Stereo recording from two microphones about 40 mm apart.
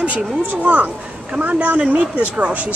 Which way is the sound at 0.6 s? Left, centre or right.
Right.